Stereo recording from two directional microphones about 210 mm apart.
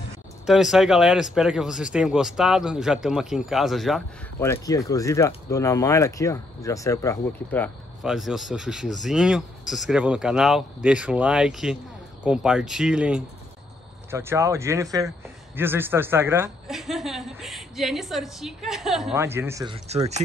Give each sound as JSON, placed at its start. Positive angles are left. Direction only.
{"t": 0.5, "sound": "speech", "side_deg": 0}
{"t": 4.4, "sound": "speech", "side_deg": 15}
{"t": 8.0, "sound": "speech", "side_deg": 0}
{"t": 19.7, "sound": "speech", "side_deg": -30}